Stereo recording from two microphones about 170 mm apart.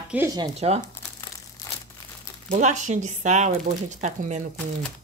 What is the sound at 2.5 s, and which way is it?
Speech, 45° right (ahead or behind).